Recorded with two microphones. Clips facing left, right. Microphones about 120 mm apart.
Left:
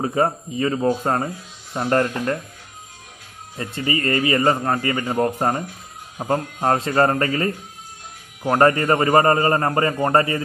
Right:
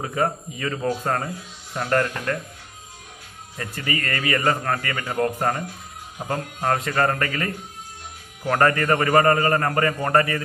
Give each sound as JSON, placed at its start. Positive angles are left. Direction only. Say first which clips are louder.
{"t": 0.0, "sound": "speech", "louder": "left 4 dB", "side_deg": 30}
{"t": 3.5, "sound": "speech", "louder": "left 4 dB", "side_deg": 25}